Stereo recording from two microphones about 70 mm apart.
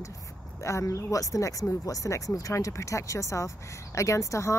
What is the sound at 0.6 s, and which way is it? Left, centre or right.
Speech, left.